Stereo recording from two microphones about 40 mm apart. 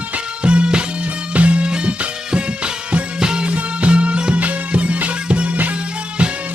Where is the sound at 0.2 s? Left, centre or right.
Right.